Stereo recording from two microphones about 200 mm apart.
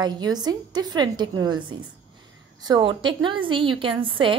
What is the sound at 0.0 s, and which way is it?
A woman's voice, 20° right (ahead or behind).